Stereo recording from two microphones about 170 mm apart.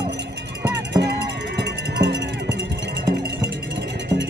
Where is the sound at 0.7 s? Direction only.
90° right.